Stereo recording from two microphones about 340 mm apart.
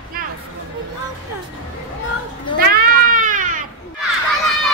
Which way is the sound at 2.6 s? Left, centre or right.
Right.